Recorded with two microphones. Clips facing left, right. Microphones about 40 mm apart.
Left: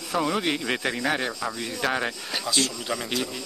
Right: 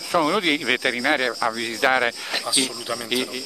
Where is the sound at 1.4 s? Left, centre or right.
Right.